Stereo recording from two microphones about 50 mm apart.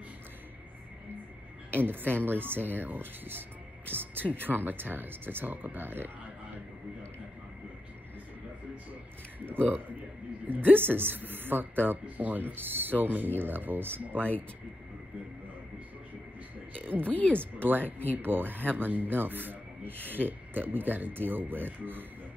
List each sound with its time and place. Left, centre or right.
2.1 s speech: right
9.5 s a man's voice: right
16.7 s speech: right
17.0 s speech: left
17.4 s speech: right